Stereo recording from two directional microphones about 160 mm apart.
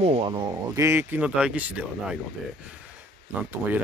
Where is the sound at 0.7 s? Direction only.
15° right (ahead or behind).